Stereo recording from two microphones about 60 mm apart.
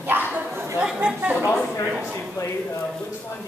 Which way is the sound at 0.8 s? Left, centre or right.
Centre.